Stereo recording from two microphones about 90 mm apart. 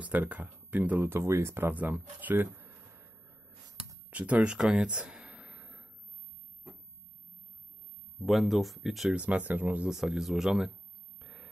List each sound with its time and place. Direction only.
0.0 s speech: 15° right (ahead or behind)
4.1 s speech: 15° right (ahead or behind)
4.6 s a sound: 10° right (ahead or behind)
8.2 s speech: centre (ahead or behind)
9.1 s speech: 15° right (ahead or behind)
9.8 s speech: 5° right (ahead or behind)
11.1 s a sound: 5° right (ahead or behind)